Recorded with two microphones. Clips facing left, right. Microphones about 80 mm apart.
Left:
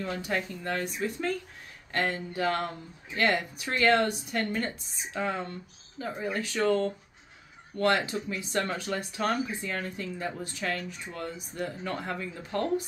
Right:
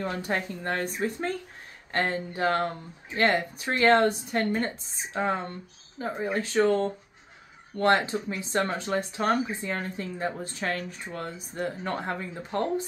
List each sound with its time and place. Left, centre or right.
0.0 s speech: right